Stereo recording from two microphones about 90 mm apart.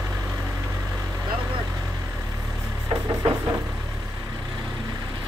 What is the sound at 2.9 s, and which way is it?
Vehicle, 40° right (ahead or behind).